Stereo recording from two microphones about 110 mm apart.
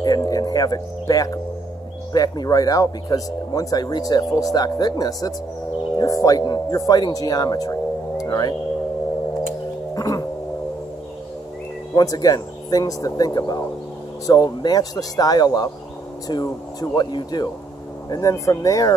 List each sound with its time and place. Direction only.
0.0 s speech: 35° left (ahead or behind)
9.9 s cat: 35° left (ahead or behind)
11.9 s speech: 35° left (ahead or behind)